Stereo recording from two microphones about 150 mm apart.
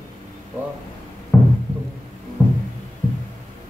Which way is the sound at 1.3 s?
10° left (ahead or behind).